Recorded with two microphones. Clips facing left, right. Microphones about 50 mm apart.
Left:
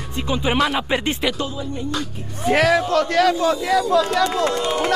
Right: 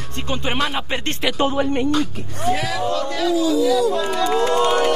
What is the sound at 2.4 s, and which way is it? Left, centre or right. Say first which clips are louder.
Speech: left 4 dB; left.